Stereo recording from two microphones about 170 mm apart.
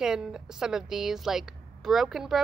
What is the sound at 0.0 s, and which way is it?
A woman's voice, 5° right (ahead or behind).